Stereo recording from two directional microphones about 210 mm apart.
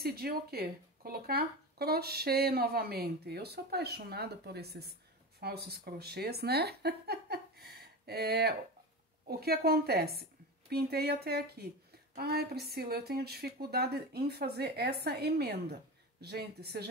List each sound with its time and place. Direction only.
0.0 s a woman's voice: 45° right (ahead or behind)